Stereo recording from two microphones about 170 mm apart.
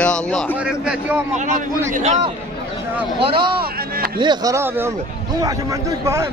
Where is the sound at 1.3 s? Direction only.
45° right (ahead or behind).